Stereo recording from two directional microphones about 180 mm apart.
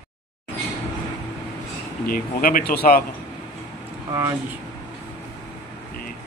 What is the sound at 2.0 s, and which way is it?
Speech, 50° left (ahead or behind).